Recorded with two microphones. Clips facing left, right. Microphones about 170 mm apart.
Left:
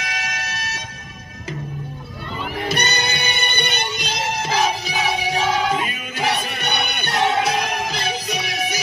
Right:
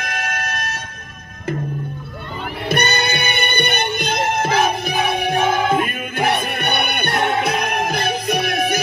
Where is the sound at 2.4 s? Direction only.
55° right (ahead or behind).